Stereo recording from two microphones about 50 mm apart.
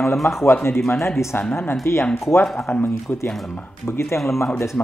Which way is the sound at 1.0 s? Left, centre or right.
Left.